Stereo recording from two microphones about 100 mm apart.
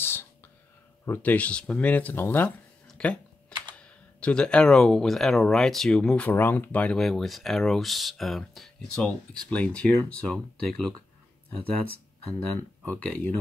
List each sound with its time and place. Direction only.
0.0 s whispering: 25° left (ahead or behind)
1.0 s speech: 20° left (ahead or behind)
2.9 s speech: 10° left (ahead or behind)
7.0 s speech: 5° left (ahead or behind)
12.4 s speech: 15° left (ahead or behind)